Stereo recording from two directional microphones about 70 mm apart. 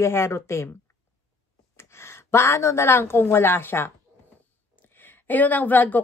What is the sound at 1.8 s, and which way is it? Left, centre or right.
A woman's voice, left.